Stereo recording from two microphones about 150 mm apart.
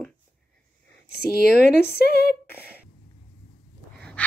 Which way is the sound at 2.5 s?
15° left (ahead or behind).